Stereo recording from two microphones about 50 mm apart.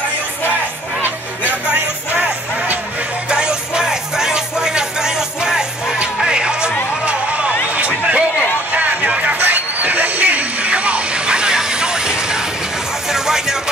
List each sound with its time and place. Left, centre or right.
3.3 s music: centre
7.1 s a sound: right
13.1 s music: centre